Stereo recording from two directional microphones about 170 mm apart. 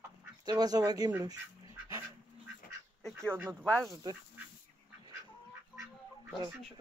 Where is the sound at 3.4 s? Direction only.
5° left (ahead or behind).